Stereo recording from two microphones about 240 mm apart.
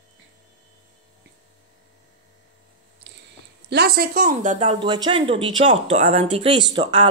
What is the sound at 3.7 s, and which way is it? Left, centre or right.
Speech, right.